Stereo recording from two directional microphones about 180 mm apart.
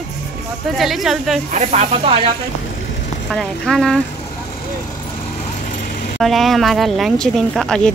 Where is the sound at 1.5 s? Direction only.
40° right (ahead or behind).